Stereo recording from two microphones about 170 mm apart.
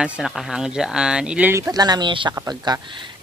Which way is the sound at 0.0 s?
Centre (ahead or behind).